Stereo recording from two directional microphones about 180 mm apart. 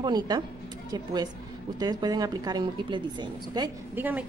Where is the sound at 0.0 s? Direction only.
25° right (ahead or behind).